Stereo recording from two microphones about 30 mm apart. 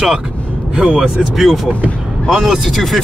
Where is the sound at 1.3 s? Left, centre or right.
Centre.